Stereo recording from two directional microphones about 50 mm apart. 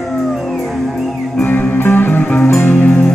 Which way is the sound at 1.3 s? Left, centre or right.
Left.